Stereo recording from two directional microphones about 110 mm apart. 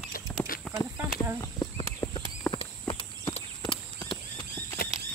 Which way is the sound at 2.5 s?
55° left (ahead or behind).